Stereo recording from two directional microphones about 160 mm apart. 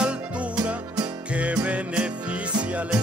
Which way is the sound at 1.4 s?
10° right (ahead or behind).